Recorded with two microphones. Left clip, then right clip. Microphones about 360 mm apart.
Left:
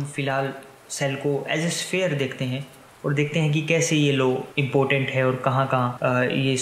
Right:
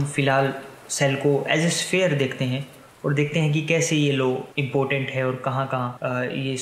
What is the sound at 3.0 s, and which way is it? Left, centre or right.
Speech, centre.